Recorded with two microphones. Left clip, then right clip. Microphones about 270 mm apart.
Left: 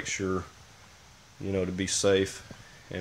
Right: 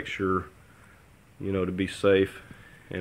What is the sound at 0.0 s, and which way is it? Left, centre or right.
Speech, centre.